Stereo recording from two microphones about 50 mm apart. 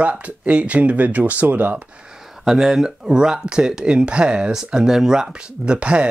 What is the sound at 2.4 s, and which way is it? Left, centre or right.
Speech, centre.